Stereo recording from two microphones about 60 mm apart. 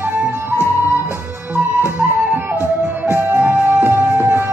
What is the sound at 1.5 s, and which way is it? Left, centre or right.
Music, right.